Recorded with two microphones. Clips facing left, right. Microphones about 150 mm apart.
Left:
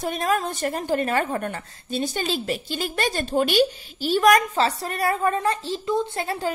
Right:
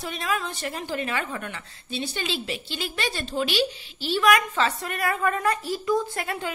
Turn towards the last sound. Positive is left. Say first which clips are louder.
# left 3 dB
turn(degrees=30)  # may be behind; listen again after turning